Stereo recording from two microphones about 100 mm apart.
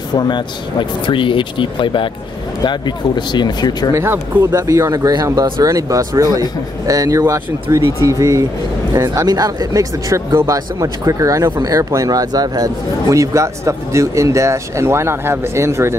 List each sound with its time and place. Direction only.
0.1 s speech: 45° left (ahead or behind)
3.9 s speech: 25° right (ahead or behind)